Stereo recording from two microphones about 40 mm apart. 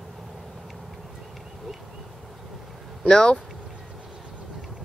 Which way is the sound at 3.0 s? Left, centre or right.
Left.